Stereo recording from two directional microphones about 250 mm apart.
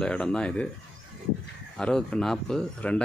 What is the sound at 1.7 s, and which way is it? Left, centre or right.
Speech, centre.